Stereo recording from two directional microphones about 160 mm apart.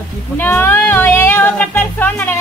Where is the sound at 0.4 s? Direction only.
15° left (ahead or behind).